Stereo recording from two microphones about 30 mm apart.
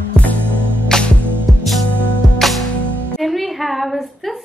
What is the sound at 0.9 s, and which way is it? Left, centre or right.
Music, left.